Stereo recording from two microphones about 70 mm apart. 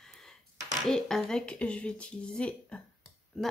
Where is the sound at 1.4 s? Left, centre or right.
Centre.